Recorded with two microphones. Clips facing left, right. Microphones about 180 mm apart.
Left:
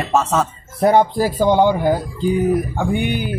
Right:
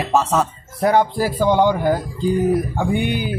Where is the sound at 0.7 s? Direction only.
25° left (ahead or behind).